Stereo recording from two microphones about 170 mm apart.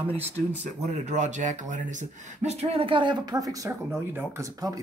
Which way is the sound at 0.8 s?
45° right (ahead or behind).